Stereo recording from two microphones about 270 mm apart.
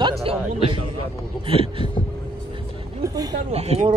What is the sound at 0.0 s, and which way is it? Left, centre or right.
A man's voice, right.